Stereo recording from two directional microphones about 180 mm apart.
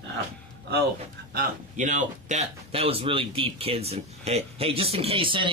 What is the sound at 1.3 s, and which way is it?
Speech, 45° right (ahead or behind).